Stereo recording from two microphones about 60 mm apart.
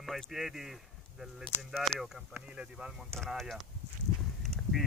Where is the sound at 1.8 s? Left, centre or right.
Centre.